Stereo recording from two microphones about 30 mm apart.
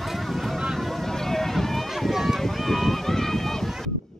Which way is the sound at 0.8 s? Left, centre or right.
Centre.